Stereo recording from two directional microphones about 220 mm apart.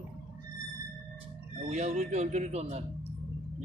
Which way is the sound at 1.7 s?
30° right (ahead or behind).